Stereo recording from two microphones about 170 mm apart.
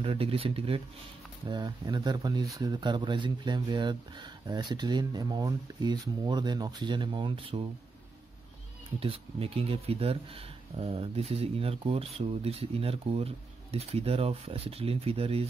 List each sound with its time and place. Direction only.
0.0 s speech: 35° right (ahead or behind)
9.0 s speech: 30° right (ahead or behind)